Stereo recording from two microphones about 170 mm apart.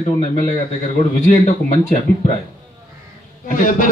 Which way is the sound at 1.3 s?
45° left (ahead or behind).